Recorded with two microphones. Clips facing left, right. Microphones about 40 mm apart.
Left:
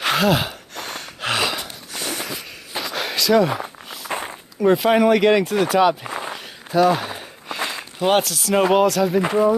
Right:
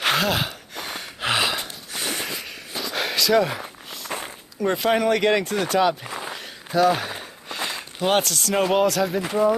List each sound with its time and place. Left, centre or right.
0.0 s gasp: centre
1.6 s snort: centre
2.8 s walk: centre
4.1 s a sound: centre
4.6 s speech: centre
6.3 s a sound: centre